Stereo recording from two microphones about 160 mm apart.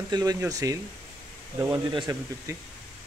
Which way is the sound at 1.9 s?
30° right (ahead or behind).